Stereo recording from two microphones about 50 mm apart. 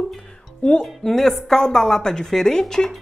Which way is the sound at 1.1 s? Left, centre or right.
Centre.